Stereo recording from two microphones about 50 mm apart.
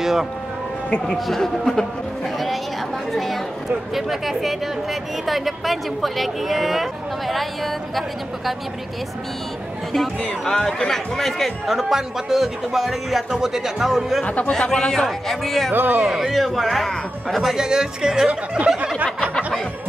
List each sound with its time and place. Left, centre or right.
0.0 s speech: centre
0.8 s a man's voice: centre
3.9 s a man's voice: centre
9.9 s a man's voice: centre
14.2 s speech: left
14.5 s a man's voice: centre
15.7 s speech: right
16.0 s a man's voice: centre
17.5 s speech: centre